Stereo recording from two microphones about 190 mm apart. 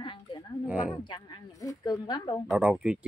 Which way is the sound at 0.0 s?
25° left (ahead or behind).